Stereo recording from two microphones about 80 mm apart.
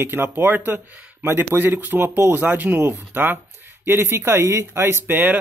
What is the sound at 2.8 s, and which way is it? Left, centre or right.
Speech, right.